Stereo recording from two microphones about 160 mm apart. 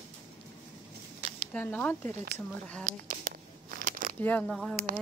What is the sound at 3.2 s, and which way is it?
Tearing, 60° right (ahead or behind).